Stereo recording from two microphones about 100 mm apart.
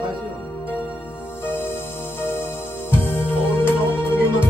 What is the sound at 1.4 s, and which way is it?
Music, 20° left (ahead or behind).